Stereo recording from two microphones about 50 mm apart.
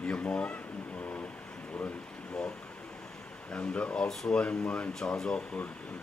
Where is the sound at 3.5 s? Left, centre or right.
Left.